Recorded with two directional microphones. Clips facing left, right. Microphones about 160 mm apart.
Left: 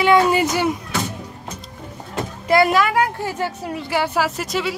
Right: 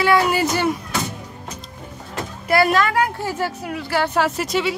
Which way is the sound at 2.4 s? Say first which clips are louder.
Left 1 dB; 20° left (ahead or behind).